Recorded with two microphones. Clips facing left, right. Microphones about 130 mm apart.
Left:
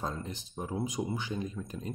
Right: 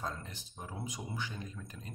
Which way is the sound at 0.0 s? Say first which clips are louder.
Left 5 dB; 20° left (ahead or behind).